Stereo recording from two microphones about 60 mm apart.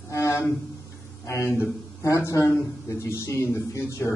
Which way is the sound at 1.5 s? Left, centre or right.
Left.